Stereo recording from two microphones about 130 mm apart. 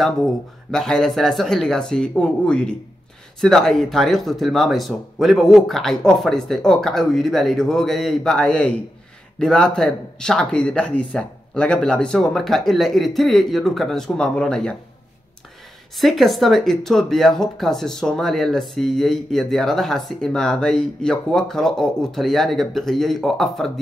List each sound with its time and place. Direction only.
0.0 s speech: 5° left (ahead or behind)
16.0 s speech: centre (ahead or behind)